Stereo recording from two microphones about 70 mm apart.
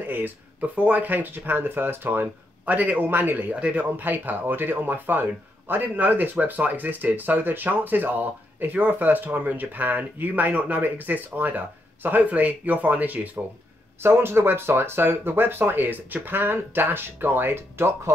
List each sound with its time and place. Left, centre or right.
0.1 s speech: right
3.5 s speech: centre
3.9 s speech: right
14.0 s speech: right